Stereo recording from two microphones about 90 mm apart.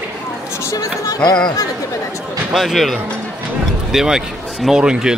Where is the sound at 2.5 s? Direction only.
Centre (ahead or behind).